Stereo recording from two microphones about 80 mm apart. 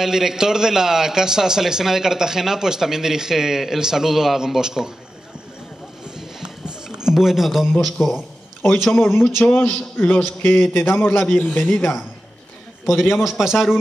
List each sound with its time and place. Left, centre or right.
0.0 s a man's voice: centre
6.1 s a sound: centre
7.8 s a man's voice: centre
9.5 s a man's voice: left
11.2 s a man's voice: centre
13.2 s a man's voice: centre